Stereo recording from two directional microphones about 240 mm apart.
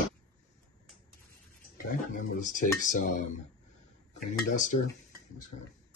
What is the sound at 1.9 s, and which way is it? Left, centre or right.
Speech, left.